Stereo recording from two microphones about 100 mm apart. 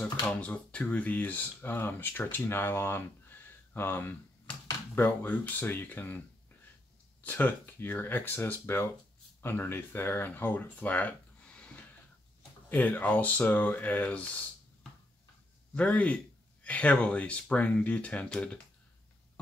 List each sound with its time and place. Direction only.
0.3 s speech: 10° left (ahead or behind)
7.2 s speech: 20° left (ahead or behind)
15.7 s speech: 15° left (ahead or behind)